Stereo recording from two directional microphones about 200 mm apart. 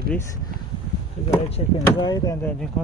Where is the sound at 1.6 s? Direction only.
25° left (ahead or behind).